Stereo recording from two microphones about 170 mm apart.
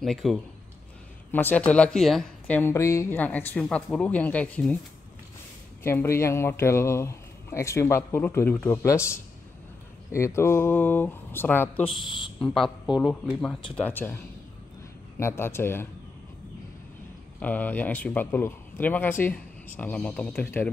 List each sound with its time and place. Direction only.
0.0 s speech: centre (ahead or behind)
5.9 s speech: 15° left (ahead or behind)
11.8 s speech: 30° left (ahead or behind)
12.4 s speech: 5° left (ahead or behind)
17.4 s speech: 10° left (ahead or behind)